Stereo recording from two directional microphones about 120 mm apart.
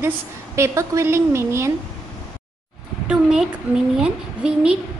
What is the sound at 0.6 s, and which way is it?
A woman's voice, 25° right (ahead or behind).